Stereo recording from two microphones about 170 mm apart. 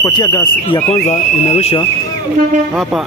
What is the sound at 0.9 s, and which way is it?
Speech, 40° left (ahead or behind).